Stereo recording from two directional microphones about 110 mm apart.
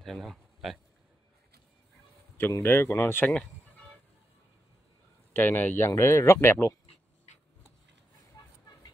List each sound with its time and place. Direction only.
0.0 s speech: centre (ahead or behind)
2.3 s speech: 20° left (ahead or behind)
5.3 s speech: 20° left (ahead or behind)